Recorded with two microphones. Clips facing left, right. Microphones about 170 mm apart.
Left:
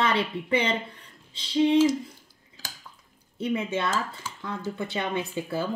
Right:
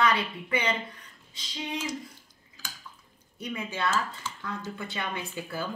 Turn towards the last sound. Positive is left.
turn(degrees=25)  # may be behind; listen again after turning